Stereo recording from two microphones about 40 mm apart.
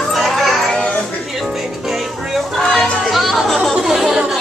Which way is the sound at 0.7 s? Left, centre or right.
Left.